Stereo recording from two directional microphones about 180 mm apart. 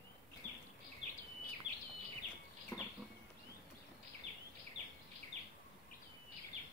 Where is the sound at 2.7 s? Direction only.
10° left (ahead or behind).